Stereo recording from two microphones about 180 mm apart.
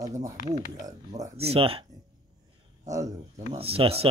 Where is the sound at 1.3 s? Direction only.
35° right (ahead or behind).